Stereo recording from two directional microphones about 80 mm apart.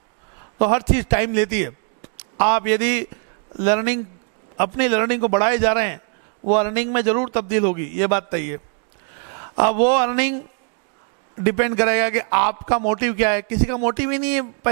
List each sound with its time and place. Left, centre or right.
0.6 s a man's voice: centre
11.4 s a man's voice: centre